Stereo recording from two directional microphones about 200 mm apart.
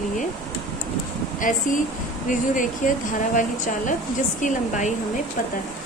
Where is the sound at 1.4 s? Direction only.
40° left (ahead or behind).